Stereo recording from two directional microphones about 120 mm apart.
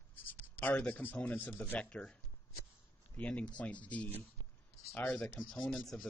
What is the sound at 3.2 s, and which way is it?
Speech, 10° left (ahead or behind).